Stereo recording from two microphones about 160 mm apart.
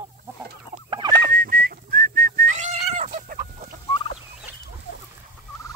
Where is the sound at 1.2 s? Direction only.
65° right (ahead or behind).